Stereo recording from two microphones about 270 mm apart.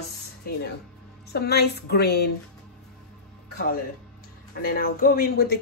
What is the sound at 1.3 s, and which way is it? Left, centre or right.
Speech, left.